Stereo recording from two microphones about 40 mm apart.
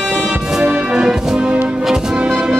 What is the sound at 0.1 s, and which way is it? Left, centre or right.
Music, centre.